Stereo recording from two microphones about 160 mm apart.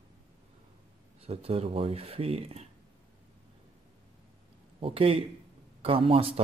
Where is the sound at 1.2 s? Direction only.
40° right (ahead or behind).